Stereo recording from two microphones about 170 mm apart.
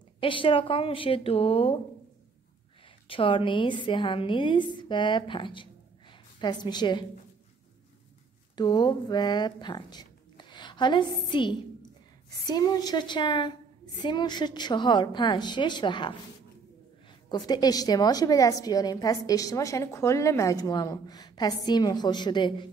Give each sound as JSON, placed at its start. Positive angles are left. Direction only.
{"t": 0.2, "sound": "speech", "side_deg": 30}
{"t": 3.1, "sound": "a woman's voice", "side_deg": 30}
{"t": 8.5, "sound": "a woman's voice", "side_deg": 25}
{"t": 17.3, "sound": "a woman's voice", "side_deg": 25}